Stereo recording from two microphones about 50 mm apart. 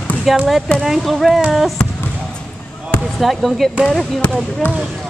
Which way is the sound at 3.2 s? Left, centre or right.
Centre.